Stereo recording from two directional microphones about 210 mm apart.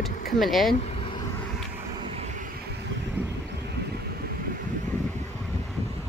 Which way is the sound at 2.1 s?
35° right (ahead or behind).